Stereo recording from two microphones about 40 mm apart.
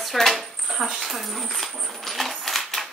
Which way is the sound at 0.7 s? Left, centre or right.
Centre.